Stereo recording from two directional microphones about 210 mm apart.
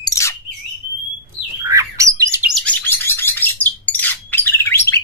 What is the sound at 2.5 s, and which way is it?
Bird, 5° left (ahead or behind).